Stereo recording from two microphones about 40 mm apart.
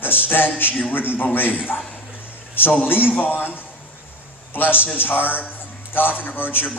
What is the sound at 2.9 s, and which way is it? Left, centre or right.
A man's voice, left.